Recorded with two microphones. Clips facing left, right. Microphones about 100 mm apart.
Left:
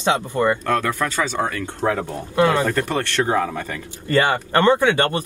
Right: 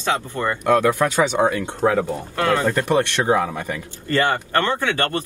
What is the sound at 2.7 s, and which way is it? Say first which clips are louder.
Speech: right 3 dB; 15° right (ahead or behind).